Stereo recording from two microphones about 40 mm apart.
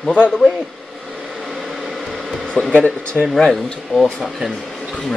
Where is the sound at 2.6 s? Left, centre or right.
Left.